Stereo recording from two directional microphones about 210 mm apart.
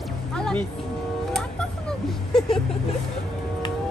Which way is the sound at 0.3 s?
5° left (ahead or behind).